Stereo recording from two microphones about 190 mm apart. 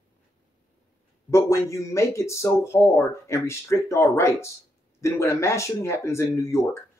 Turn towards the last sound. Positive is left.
turn(degrees=15)  # may be behind; listen again after turning